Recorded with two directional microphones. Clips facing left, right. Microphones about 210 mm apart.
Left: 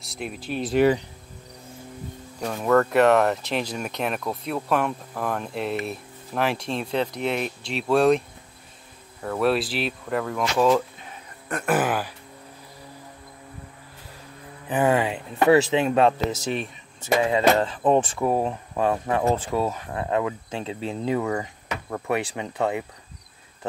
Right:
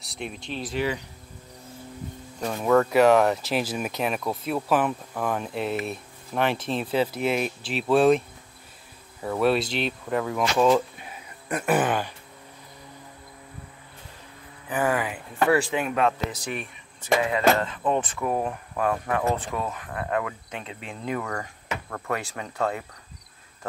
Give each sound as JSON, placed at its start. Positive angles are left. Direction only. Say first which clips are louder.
{"t": 0.0, "sound": "speech", "louder": "left 2 dB", "side_deg": 0}
{"t": 2.4, "sound": "speech", "louder": "even", "side_deg": 0}
{"t": 9.2, "sound": "speech", "louder": "even", "side_deg": 0}
{"t": 14.7, "sound": "speech", "louder": "left 4 dB", "side_deg": 25}